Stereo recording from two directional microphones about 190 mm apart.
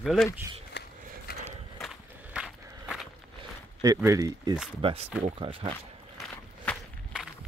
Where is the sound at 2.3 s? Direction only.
5° right (ahead or behind).